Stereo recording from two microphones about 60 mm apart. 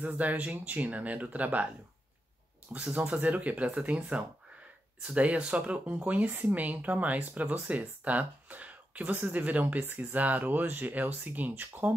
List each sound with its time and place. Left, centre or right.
0.0 s speech: right
2.7 s speech: right